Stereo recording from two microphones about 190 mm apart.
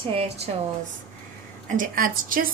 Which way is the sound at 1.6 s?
45° right (ahead or behind).